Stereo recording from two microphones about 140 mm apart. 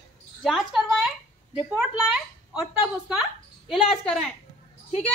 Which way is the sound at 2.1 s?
5° right (ahead or behind).